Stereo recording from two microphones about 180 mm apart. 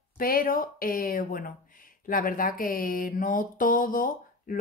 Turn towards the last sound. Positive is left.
turn(degrees=50)  # may be behind; listen again after turning